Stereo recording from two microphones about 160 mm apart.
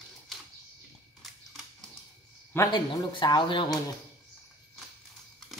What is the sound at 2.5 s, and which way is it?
Speech, 25° left (ahead or behind).